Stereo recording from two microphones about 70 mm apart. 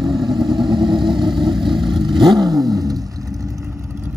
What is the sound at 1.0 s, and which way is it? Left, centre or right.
Vehicle, right.